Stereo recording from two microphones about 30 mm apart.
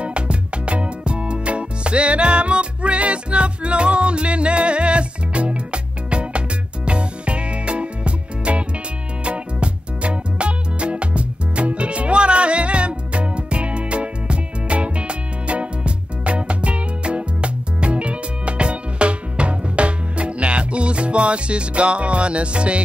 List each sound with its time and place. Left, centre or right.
0.0 s music: right